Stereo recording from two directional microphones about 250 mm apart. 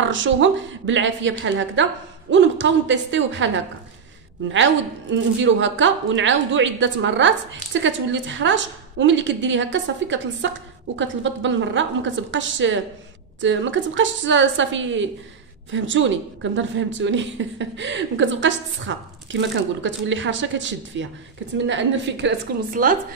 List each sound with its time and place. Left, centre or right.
0.0 s speech: right
5.1 s speech: right
22.7 s speech: right